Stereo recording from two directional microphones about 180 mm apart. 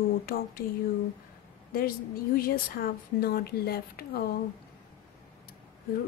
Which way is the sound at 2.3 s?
55° left (ahead or behind).